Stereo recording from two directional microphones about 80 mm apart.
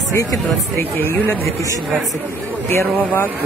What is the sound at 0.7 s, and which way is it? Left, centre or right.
Speech, left.